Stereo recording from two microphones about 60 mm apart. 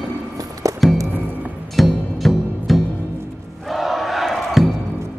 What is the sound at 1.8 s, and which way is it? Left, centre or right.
Music, centre.